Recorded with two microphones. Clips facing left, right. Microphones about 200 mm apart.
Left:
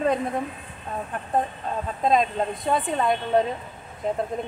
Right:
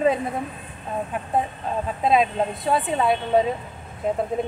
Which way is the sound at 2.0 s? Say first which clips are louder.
Right 2 dB; 5° right (ahead or behind).